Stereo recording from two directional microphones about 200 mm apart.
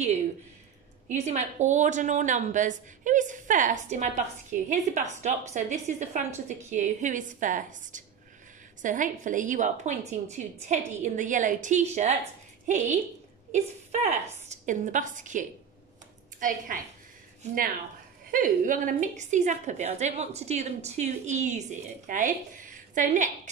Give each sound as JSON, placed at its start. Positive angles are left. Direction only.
{"t": 1.0, "sound": "a woman's voice", "side_deg": -35}
{"t": 14.2, "sound": "a woman's voice", "side_deg": -35}
{"t": 18.3, "sound": "a woman's voice", "side_deg": -40}